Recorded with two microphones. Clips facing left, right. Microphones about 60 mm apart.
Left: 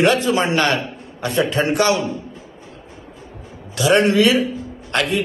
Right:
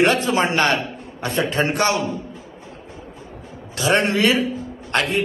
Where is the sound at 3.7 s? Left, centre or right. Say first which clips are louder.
Left 4 dB; right.